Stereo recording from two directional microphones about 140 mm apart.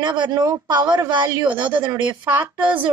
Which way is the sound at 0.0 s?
35° right (ahead or behind).